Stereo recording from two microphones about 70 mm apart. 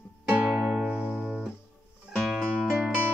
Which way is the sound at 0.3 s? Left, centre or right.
Centre.